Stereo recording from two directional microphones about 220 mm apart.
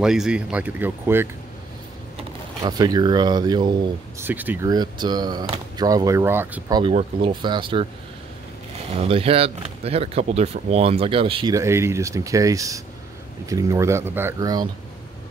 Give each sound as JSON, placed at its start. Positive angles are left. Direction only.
{"t": 0.0, "sound": "speech", "side_deg": -5}
{"t": 2.6, "sound": "speech", "side_deg": -20}
{"t": 4.2, "sound": "speech", "side_deg": -10}
{"t": 6.8, "sound": "speech", "side_deg": -25}
{"t": 8.9, "sound": "speech", "side_deg": -25}